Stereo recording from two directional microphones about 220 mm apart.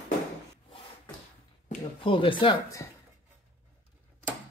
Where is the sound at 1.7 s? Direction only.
25° left (ahead or behind).